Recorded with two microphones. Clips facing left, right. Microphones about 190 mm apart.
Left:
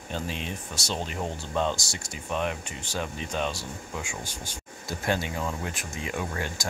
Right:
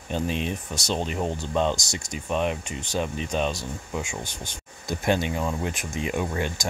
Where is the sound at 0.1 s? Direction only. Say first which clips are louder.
Right 6 dB; 20° right (ahead or behind).